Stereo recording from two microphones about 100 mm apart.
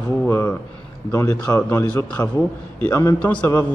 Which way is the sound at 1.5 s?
20° left (ahead or behind).